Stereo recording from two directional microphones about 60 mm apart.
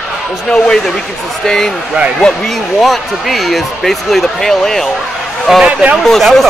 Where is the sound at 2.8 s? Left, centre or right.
Centre.